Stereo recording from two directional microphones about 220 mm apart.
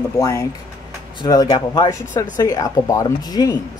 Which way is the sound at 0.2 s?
15° left (ahead or behind).